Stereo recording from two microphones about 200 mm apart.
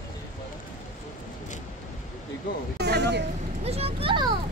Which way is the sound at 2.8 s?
55° right (ahead or behind).